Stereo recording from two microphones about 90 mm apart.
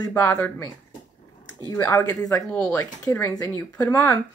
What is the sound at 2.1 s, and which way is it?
Speech, 40° left (ahead or behind).